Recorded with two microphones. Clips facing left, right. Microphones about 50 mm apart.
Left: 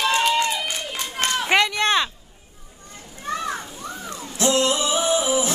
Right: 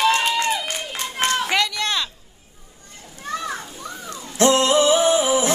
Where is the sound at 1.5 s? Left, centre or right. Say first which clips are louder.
Left 3 dB; left.